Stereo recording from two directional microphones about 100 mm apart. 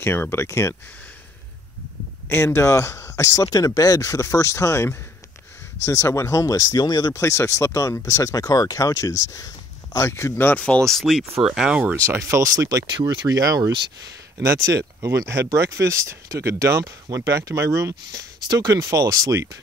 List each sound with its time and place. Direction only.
0.0 s speech: 25° left (ahead or behind)
2.2 s speech: 25° left (ahead or behind); by 12.0 s 10° right (ahead or behind)
12.0 s speech: 30° right (ahead or behind)